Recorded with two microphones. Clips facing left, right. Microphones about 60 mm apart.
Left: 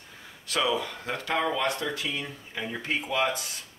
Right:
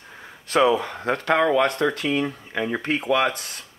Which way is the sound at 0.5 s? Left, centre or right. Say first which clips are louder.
Right 8 dB; right.